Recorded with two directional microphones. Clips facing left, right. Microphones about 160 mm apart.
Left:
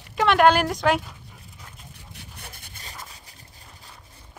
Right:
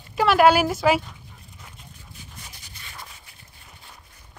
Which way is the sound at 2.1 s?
60° left (ahead or behind).